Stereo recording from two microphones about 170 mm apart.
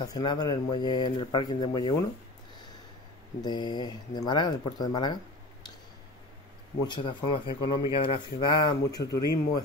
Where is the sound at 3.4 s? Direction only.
25° left (ahead or behind).